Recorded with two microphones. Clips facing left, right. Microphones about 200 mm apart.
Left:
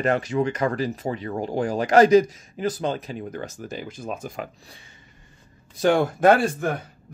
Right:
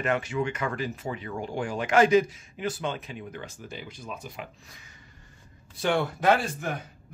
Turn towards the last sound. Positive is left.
turn(degrees=50)  # may be behind; listen again after turning